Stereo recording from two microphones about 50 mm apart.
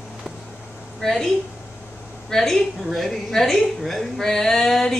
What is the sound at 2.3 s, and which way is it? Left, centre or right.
A woman's voice, centre.